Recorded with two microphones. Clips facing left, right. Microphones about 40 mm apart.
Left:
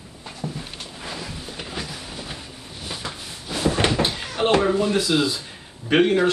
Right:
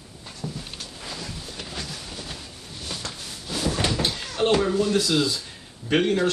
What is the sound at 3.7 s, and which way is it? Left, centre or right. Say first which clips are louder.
Speech: left 4 dB; left.